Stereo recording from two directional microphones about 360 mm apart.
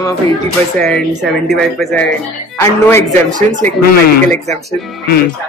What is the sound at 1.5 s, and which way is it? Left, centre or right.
Speech, centre.